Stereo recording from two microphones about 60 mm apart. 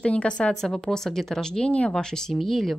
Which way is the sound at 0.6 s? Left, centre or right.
Centre.